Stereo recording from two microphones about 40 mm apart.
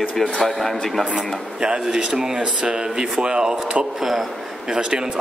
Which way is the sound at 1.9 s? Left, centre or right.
Centre.